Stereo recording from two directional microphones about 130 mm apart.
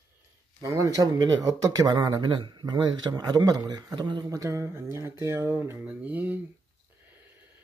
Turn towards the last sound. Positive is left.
turn(degrees=-10)  # may be behind; listen again after turning